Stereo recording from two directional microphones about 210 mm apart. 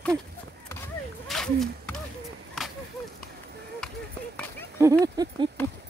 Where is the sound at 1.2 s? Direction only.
Centre (ahead or behind).